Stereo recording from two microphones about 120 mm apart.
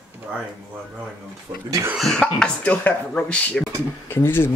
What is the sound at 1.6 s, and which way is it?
Speech, 25° right (ahead or behind).